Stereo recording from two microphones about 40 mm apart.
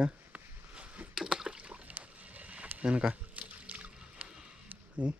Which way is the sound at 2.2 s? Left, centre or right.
Right.